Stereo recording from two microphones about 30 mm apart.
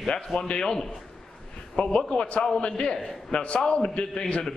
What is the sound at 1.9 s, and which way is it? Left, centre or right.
A man's voice, left.